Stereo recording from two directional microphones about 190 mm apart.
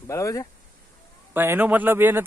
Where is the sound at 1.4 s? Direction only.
10° right (ahead or behind).